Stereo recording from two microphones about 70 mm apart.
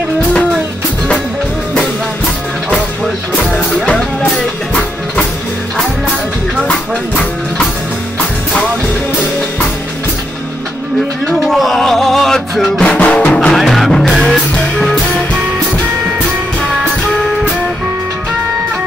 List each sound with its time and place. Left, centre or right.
3.5 s music: centre
11.2 s music: centre; by 13.5 s left
13.5 s music: centre